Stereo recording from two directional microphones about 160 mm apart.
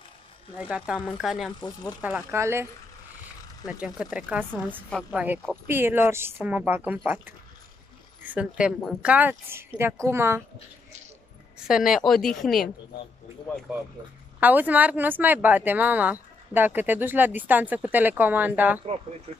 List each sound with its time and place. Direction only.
0.6 s speech: 5° right (ahead or behind)
8.3 s speech: 5° right (ahead or behind)
11.6 s speech: 5° right (ahead or behind)
14.4 s speech: 10° right (ahead or behind)